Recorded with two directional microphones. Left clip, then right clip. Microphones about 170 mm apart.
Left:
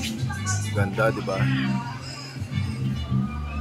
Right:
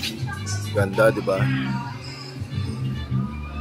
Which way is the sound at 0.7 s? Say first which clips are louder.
Right 6 dB; 20° right (ahead or behind).